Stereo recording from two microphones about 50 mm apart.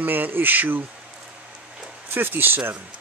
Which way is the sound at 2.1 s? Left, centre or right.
Right.